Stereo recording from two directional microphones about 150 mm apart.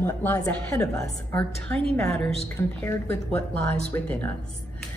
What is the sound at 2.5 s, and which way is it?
A woman's voice, 15° left (ahead or behind).